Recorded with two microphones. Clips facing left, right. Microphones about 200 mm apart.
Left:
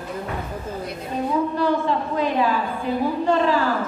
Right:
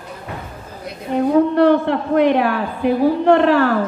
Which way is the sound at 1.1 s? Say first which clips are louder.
Right 9 dB; 65° right (ahead or behind).